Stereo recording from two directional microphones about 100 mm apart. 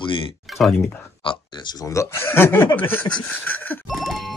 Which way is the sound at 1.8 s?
30° left (ahead or behind).